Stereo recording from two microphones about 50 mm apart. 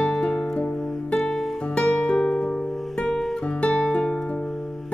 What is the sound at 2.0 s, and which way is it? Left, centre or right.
Music, centre.